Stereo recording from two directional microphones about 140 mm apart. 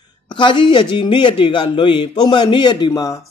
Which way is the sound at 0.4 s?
35° left (ahead or behind).